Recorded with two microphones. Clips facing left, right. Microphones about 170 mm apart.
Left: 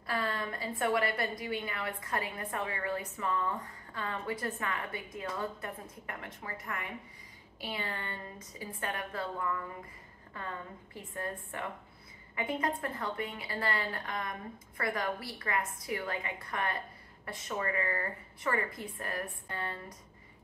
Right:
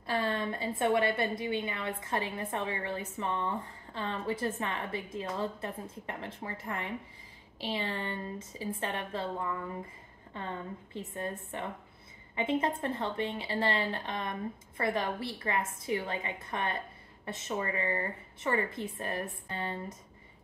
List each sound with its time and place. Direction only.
0.0 s a woman's voice: 25° right (ahead or behind)